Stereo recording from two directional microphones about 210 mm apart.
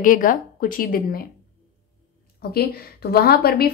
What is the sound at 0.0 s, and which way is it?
Speech, 40° left (ahead or behind).